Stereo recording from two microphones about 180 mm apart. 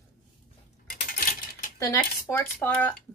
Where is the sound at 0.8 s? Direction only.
50° left (ahead or behind).